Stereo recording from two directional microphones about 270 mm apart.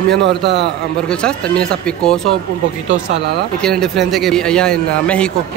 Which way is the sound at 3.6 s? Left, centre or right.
Centre.